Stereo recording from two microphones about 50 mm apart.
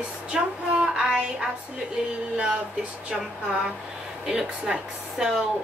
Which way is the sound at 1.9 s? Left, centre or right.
Centre.